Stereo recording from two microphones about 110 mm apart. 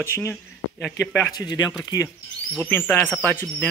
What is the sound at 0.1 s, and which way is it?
Speech, 25° left (ahead or behind).